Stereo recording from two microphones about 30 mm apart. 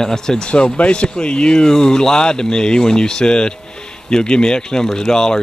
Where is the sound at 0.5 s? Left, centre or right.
Left.